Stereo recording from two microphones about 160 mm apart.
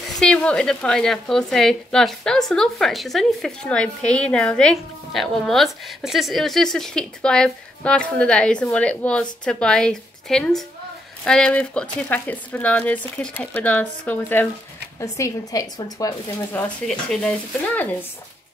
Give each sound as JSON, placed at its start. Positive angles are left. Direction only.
{"t": 0.2, "sound": "a woman's voice", "side_deg": 5}
{"t": 16.8, "sound": "a woman's voice", "side_deg": 5}